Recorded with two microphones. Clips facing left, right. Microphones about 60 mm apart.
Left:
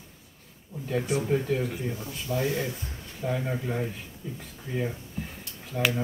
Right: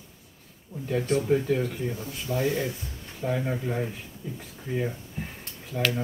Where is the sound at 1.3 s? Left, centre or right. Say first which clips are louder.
Right 2 dB; centre.